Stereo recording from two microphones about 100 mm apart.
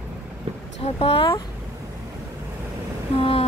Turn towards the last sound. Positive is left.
turn(degrees=75)  # may be behind; listen again after turning